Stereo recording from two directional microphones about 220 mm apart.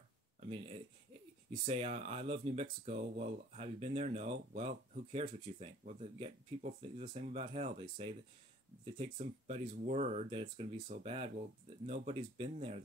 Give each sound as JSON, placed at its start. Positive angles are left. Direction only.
{"t": 0.4, "sound": "speech", "side_deg": -25}